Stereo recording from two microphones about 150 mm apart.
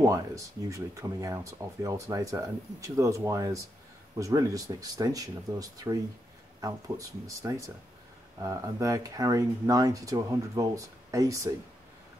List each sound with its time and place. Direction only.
0.0 s speech: 20° right (ahead or behind)